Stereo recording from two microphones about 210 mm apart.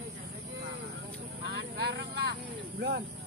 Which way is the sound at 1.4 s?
55° right (ahead or behind).